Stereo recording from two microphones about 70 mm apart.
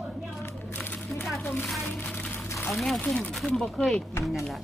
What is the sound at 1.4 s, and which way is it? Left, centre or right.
Speech, left.